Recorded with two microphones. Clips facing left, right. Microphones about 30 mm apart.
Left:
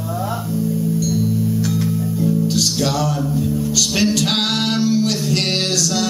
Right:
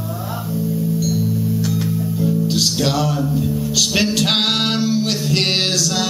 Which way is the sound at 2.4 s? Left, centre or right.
Centre.